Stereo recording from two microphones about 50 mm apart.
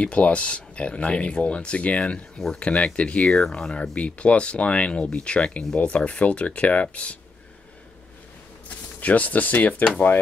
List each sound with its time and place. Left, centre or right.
0.0 s speech: left
8.6 s speech: left